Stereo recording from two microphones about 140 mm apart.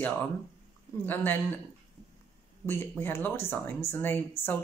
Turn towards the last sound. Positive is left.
turn(degrees=15)  # may be behind; listen again after turning